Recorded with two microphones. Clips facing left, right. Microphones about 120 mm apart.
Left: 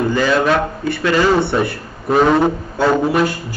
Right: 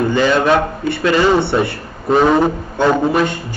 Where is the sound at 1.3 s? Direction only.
Centre (ahead or behind).